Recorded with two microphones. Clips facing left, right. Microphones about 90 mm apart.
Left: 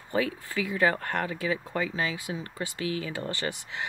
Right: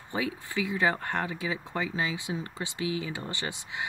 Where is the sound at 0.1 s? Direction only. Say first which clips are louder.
Left 3 dB; 20° right (ahead or behind).